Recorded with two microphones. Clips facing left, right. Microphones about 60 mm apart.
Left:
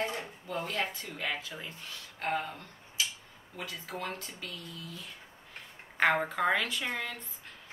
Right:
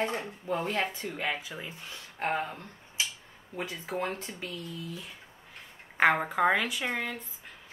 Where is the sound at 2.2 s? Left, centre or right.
Right.